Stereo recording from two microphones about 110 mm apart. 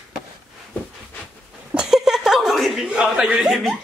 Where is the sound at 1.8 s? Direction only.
5° right (ahead or behind).